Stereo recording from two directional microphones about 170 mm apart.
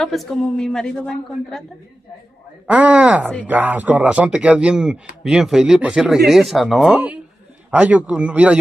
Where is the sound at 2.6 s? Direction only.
10° right (ahead or behind).